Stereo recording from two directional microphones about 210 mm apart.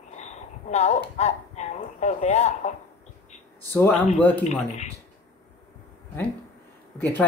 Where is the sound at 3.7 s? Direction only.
10° left (ahead or behind).